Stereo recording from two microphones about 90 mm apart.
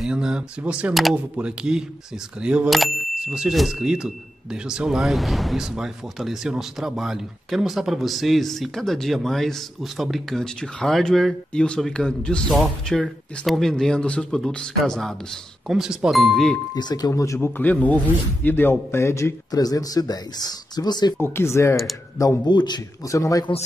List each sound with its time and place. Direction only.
0.0 s speech: 10° right (ahead or behind)
2.7 s speech: centre (ahead or behind)
16.7 s speech: 50° left (ahead or behind)
17.1 s a man's voice: 35° left (ahead or behind)
17.6 s speech: 20° left (ahead or behind)
19.5 s speech: 45° left (ahead or behind)
21.2 s speech: 25° left (ahead or behind)
22.4 s a man's voice: 55° left (ahead or behind)
23.0 s a man's voice: 40° left (ahead or behind)